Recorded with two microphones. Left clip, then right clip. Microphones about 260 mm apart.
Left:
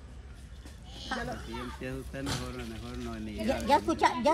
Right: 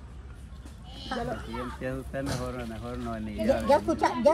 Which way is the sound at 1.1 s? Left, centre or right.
Centre.